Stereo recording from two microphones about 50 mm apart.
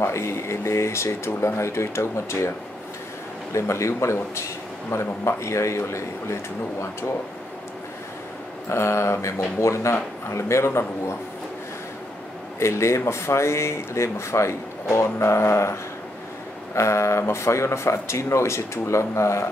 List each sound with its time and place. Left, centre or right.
0.0 s speech: left
3.5 s speech: left
8.6 s speech: left
10.3 s a man's voice: left
12.5 s speech: left
16.7 s speech: left